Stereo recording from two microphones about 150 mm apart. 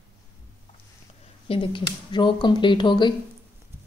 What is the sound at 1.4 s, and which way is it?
Speech, 35° left (ahead or behind).